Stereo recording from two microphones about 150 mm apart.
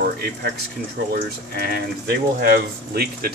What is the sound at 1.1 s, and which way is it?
Speech, 80° right.